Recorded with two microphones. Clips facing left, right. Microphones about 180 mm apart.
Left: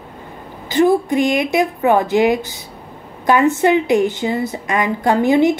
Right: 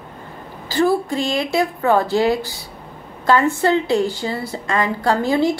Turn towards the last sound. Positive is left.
turn(degrees=20)  # may be behind; listen again after turning